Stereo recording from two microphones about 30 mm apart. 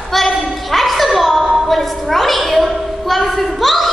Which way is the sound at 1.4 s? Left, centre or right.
Centre.